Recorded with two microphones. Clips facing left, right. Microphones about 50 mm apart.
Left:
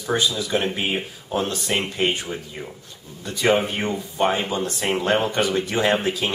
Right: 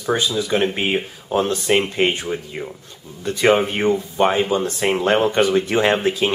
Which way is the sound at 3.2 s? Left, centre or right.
Right.